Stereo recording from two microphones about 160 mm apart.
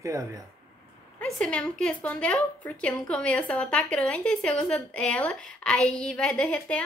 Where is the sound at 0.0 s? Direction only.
20° right (ahead or behind).